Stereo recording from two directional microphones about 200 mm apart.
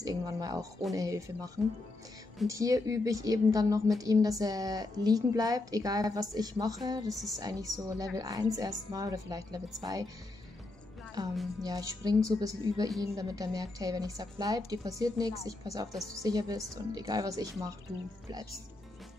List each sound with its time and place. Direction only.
0.0 s a woman's voice: 20° right (ahead or behind)
11.6 s a woman's voice: 20° right (ahead or behind)